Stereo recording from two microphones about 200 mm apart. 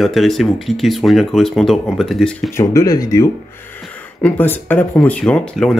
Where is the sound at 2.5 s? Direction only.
15° left (ahead or behind).